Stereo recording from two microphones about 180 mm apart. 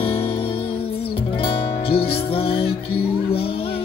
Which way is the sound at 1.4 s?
30° left (ahead or behind).